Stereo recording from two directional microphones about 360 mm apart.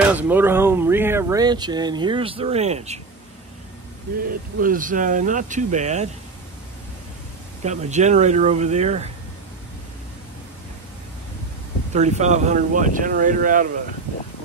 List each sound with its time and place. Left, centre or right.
0.0 s speech: centre
4.6 s speech: right
7.6 s speech: centre
11.9 s speech: centre